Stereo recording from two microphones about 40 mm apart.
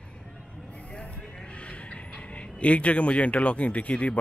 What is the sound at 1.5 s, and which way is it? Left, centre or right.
Speech, left.